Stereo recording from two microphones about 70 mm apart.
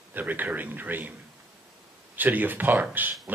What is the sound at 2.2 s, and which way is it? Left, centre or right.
Speech, right.